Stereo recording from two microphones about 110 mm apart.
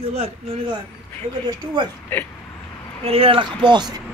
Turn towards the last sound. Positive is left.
turn(degrees=-40)  # may be behind; listen again after turning